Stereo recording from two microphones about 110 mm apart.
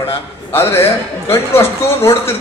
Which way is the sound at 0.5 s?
25° left (ahead or behind).